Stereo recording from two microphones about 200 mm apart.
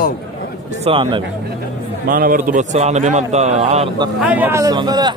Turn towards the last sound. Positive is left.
turn(degrees=-20)  # may be behind; listen again after turning